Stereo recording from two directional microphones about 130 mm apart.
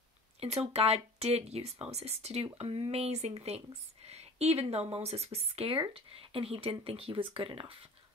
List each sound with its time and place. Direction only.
0.4 s speech: 50° right (ahead or behind)